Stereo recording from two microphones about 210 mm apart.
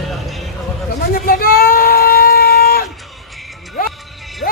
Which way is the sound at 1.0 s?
45° left (ahead or behind).